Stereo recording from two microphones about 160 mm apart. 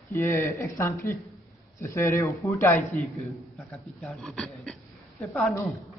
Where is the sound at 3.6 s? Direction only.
Centre (ahead or behind).